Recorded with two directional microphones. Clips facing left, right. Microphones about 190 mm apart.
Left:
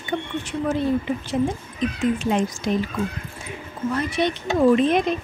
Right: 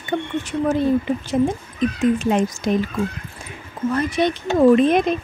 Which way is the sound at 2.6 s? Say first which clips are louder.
Right 4 dB; 45° right (ahead or behind).